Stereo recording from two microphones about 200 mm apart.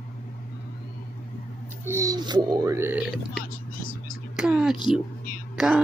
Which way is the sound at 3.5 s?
45° left (ahead or behind).